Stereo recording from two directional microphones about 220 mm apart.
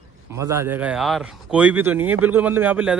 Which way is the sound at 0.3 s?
15° right (ahead or behind).